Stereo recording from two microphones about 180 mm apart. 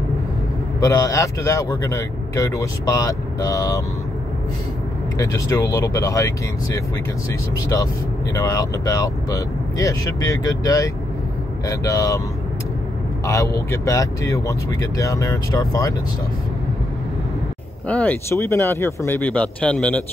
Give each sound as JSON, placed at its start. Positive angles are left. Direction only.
{"t": 0.7, "sound": "a man's voice", "side_deg": 20}
{"t": 5.1, "sound": "a man's voice", "side_deg": 20}
{"t": 8.4, "sound": "a man's voice", "side_deg": 20}
{"t": 13.3, "sound": "a man's voice", "side_deg": 15}
{"t": 17.8, "sound": "a man's voice", "side_deg": 10}